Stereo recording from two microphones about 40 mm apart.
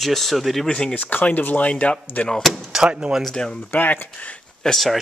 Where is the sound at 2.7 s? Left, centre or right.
Right.